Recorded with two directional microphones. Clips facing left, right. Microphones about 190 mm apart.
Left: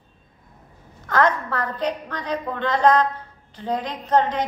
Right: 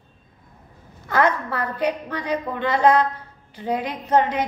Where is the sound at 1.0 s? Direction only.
10° right (ahead or behind).